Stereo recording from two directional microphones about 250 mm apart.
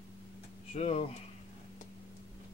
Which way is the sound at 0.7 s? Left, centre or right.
Left.